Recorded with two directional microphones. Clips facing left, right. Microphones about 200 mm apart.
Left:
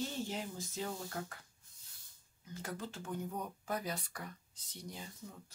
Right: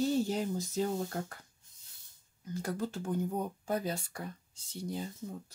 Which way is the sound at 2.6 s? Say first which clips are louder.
Right 8 dB; 40° right (ahead or behind).